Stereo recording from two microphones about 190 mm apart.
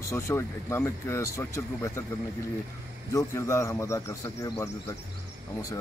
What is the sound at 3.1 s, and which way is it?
Speech, 15° left (ahead or behind).